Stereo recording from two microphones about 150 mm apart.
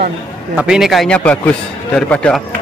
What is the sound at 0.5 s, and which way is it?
A man's voice, 5° right (ahead or behind).